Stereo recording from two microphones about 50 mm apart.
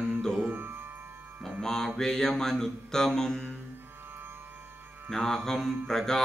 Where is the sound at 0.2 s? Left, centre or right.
Centre.